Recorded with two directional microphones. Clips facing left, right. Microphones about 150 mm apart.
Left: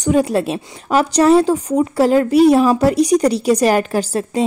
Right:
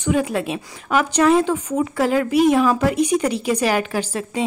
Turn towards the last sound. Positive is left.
turn(degrees=40)  # may be behind; listen again after turning